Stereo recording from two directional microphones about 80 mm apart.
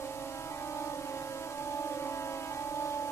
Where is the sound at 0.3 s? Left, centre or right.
Left.